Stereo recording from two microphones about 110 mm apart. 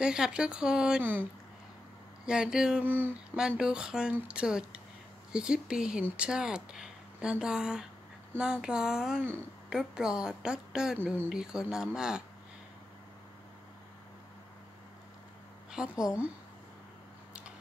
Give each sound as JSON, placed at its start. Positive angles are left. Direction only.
{"t": 0.0, "sound": "speech", "side_deg": -5}
{"t": 2.2, "sound": "speech", "side_deg": -5}
{"t": 2.8, "sound": "speech", "side_deg": -20}
{"t": 3.3, "sound": "speech", "side_deg": -5}
{"t": 15.7, "sound": "a woman's voice", "side_deg": -5}